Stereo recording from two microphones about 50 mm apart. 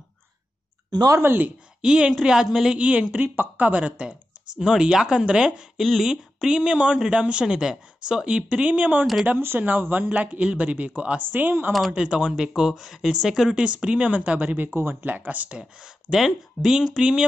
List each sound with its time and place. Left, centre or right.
1.1 s speech: right
1.8 s speech: centre
2.8 s speech: right
3.2 s speech: right
4.6 s speech: centre
5.8 s speech: centre
6.0 s speech: centre
9.6 s speech: right
10.0 s speech: right
11.3 s speech: right
11.9 s speech: centre
14.7 s speech: right
15.0 s speech: right
15.5 s speech: centre